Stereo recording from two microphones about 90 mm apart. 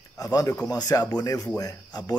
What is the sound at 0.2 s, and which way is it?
A man's voice, 40° left (ahead or behind).